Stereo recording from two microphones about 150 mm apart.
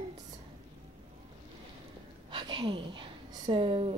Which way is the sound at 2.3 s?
30° right (ahead or behind).